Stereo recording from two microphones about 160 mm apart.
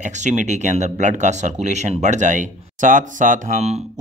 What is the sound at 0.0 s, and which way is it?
Speech, 50° right (ahead or behind).